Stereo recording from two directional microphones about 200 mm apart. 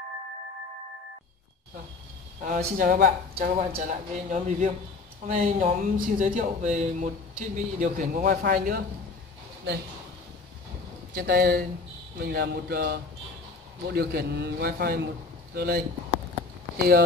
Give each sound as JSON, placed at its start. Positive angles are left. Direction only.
{"t": 2.4, "sound": "speech", "side_deg": -45}
{"t": 11.1, "sound": "speech", "side_deg": -50}